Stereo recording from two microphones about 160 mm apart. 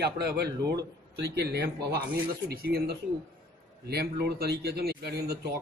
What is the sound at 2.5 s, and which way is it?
Speech, 75° right (ahead or behind).